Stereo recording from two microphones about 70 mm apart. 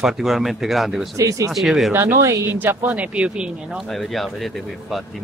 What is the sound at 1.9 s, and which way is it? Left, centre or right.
Speech, right.